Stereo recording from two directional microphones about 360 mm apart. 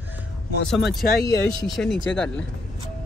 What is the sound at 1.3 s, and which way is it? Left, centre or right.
Speech, centre.